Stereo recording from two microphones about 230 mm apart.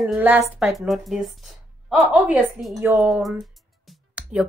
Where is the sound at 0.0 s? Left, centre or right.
Centre.